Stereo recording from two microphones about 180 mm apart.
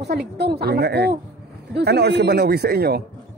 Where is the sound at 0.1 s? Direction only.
60° right (ahead or behind).